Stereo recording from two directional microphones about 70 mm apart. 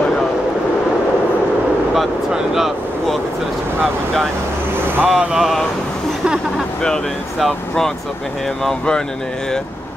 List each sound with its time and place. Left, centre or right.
2.0 s vehicle: centre
5.0 s speech: centre
5.3 s speech: centre
7.3 s speech: centre